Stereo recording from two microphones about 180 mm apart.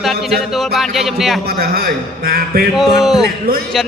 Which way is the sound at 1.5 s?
55° right (ahead or behind).